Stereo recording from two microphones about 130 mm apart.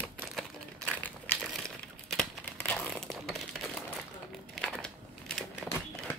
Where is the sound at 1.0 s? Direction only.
15° left (ahead or behind).